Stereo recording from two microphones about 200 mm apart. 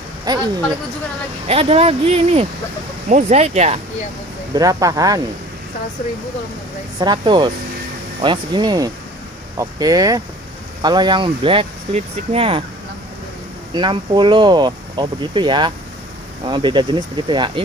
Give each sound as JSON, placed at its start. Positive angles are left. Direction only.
{"t": 0.3, "sound": "speech", "side_deg": -20}
{"t": 1.5, "sound": "speech", "side_deg": -30}
{"t": 4.6, "sound": "speech", "side_deg": -15}
{"t": 7.0, "sound": "speech", "side_deg": -25}
{"t": 13.7, "sound": "speech", "side_deg": -25}